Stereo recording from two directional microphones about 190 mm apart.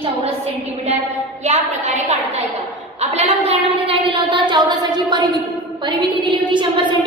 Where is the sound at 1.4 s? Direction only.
35° right (ahead or behind).